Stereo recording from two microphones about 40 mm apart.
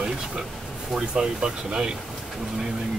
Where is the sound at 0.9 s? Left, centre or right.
Centre.